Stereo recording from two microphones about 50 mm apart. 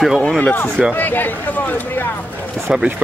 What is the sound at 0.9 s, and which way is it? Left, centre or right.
Speech, left.